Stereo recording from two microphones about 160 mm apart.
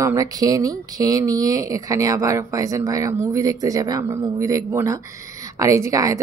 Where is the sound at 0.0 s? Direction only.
20° right (ahead or behind).